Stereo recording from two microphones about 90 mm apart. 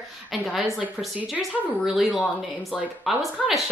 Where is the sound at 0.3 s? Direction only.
Centre (ahead or behind).